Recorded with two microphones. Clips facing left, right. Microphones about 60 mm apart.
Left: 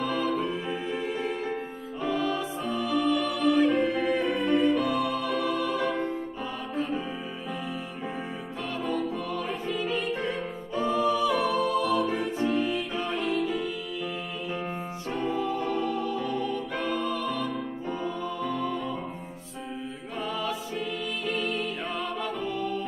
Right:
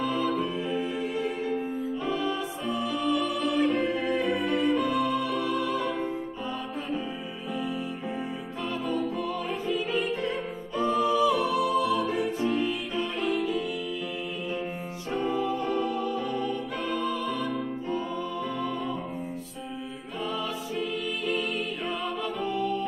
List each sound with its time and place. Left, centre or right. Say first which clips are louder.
0.2 s music: even; centre
2.1 s music: left 4 dB; centre
3.3 s music: left 3 dB; centre
8.8 s music: even; centre
10.8 s a capella: right 1 dB; centre
12.4 s music: left 1 dB; centre
15.1 s music: right 1 dB; centre
17.1 s music: even; centre
21.3 s music: left 1 dB; centre